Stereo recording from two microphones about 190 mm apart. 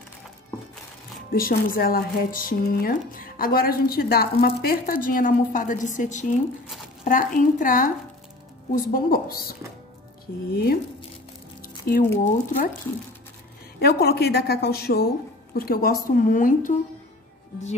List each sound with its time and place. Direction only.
1.3 s speech: 50° left (ahead or behind)
8.9 s a sound: 50° left (ahead or behind)
10.5 s speech: 55° left (ahead or behind)
11.6 s a sound: 50° left (ahead or behind)
12.3 s speech: 45° left (ahead or behind)
13.7 s speech: 55° left (ahead or behind)